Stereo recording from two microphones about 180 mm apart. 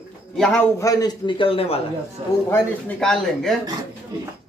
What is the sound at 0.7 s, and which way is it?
A man's voice, 20° left (ahead or behind).